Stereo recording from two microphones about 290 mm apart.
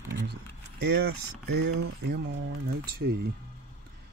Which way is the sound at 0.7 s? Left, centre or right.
Right.